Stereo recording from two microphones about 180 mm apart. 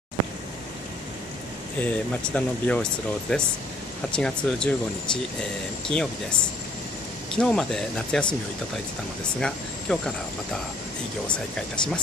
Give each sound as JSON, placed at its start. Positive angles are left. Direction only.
{"t": 1.8, "sound": "speech", "side_deg": 5}
{"t": 7.3, "sound": "speech", "side_deg": 5}
{"t": 9.4, "sound": "speech", "side_deg": 5}
{"t": 11.2, "sound": "speech", "side_deg": 5}